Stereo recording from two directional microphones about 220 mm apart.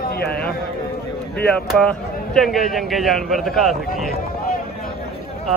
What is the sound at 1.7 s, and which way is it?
A man's voice, 5° left (ahead or behind).